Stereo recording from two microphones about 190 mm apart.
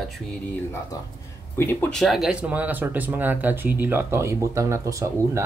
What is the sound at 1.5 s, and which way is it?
Speech, 10° left (ahead or behind).